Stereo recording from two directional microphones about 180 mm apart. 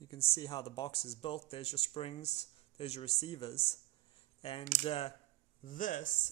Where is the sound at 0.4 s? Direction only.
20° left (ahead or behind).